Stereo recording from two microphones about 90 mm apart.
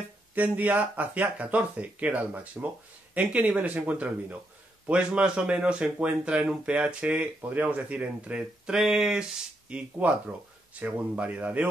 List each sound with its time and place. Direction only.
0.3 s speech: 20° right (ahead or behind)